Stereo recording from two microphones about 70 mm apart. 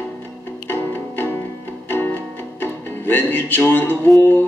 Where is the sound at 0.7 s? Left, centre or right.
Left.